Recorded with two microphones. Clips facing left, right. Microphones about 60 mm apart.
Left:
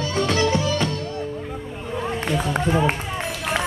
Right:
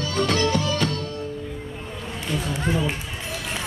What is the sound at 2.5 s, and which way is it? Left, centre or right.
Run, left.